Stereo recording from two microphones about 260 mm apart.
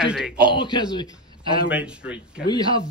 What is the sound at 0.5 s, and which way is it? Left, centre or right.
Speech, centre.